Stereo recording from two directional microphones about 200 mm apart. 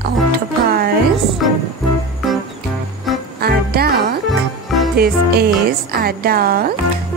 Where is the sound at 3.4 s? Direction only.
50° right (ahead or behind).